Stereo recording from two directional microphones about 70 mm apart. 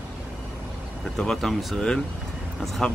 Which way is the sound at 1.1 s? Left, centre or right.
Centre.